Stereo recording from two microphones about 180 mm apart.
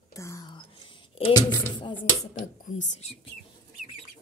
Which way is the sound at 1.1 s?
30° left (ahead or behind).